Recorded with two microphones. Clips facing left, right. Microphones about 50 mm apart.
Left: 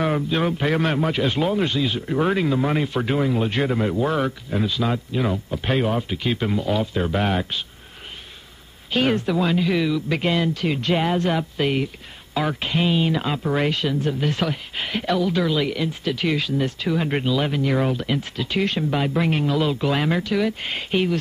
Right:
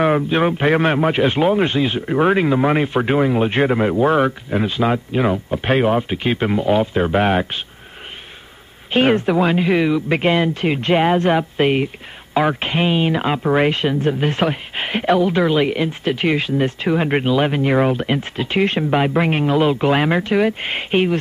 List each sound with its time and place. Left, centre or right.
0.0 s speech: right
8.9 s speech: right